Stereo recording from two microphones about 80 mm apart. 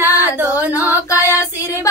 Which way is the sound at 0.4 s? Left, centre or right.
Right.